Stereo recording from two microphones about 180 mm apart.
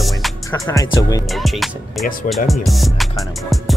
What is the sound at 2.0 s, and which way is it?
Speech, 50° left (ahead or behind).